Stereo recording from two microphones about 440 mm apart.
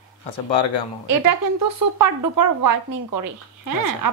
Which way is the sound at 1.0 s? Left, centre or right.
Right.